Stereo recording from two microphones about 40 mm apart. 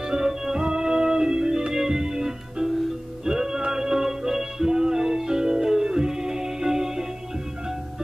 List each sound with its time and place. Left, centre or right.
0.0 s music: centre